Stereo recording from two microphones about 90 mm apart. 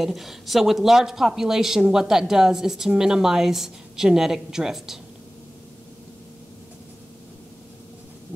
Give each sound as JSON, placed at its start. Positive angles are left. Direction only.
{"t": 0.0, "sound": "speech", "side_deg": 0}